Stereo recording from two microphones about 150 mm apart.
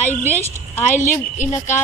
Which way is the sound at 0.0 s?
15° left (ahead or behind).